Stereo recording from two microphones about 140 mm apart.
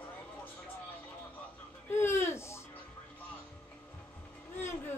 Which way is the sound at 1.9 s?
20° left (ahead or behind).